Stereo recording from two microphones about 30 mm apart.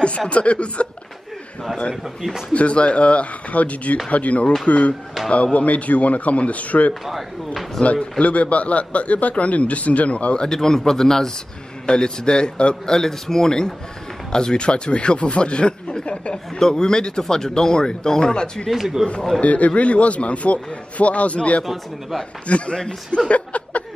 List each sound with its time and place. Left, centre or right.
0.3 s a man's voice: left
2.5 s a man's voice: left
10.3 s speech: left
10.6 s speech: centre
11.8 s speech: left
12.8 s speech: centre
14.3 s speech: left
16.5 s speech: left
19.4 s a man's voice: left
22.8 s speech: left
23.3 s a sound: left